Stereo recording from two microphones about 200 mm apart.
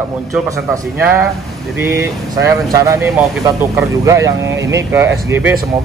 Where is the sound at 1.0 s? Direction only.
15° right (ahead or behind).